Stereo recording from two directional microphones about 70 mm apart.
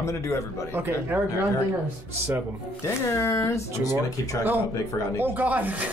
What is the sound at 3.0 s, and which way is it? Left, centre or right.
Speech, left.